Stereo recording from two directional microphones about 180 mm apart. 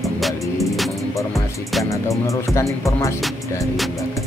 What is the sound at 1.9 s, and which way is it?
Music, 15° left (ahead or behind).